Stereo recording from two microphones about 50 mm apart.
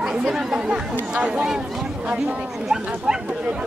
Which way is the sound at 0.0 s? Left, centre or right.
Centre.